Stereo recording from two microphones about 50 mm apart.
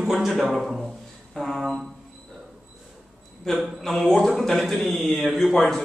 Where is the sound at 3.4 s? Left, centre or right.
Centre.